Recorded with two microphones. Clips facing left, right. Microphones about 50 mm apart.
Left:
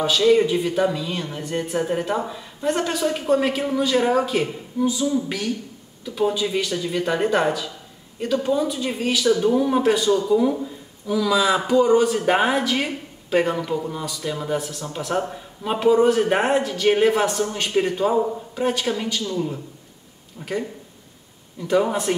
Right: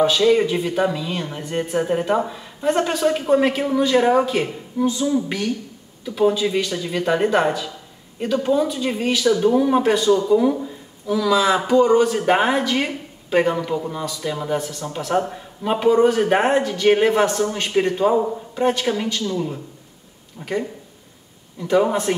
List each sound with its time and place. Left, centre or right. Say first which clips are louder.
0.2 s a woman's voice: even; centre
6.0 s a woman's voice: right 4 dB; centre
21.5 s a man's voice: right 2 dB; centre